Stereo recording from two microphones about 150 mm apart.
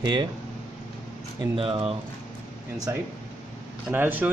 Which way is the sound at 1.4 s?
35° right (ahead or behind).